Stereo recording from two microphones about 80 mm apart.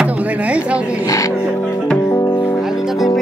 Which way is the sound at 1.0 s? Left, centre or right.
Left.